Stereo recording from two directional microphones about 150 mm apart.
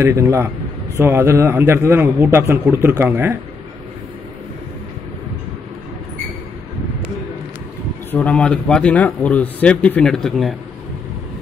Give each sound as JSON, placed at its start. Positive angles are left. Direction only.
{"t": 0.0, "sound": "a man's voice", "side_deg": -20}
{"t": 8.1, "sound": "speech", "side_deg": 10}